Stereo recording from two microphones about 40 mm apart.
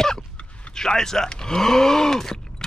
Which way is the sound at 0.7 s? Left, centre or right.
Centre.